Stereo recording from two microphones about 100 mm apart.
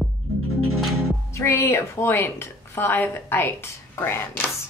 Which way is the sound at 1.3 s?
25° left (ahead or behind).